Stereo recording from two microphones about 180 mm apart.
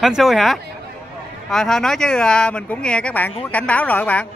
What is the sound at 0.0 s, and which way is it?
Speech, centre (ahead or behind).